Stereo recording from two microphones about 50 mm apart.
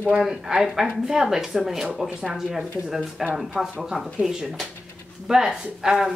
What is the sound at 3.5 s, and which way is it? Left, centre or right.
Speech, centre.